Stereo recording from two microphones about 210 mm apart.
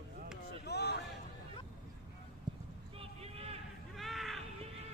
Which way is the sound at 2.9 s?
30° right (ahead or behind).